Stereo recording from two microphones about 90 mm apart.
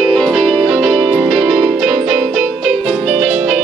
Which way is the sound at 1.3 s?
5° right (ahead or behind).